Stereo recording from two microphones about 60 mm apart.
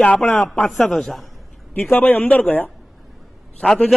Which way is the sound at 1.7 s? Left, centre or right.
Left.